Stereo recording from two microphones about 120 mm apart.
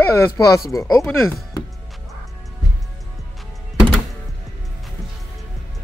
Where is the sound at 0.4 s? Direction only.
25° left (ahead or behind).